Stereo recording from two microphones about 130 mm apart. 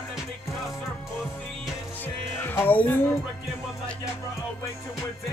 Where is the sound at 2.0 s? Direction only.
15° left (ahead or behind).